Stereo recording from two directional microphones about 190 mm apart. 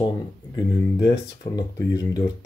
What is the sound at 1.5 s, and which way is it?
Speech, 20° left (ahead or behind).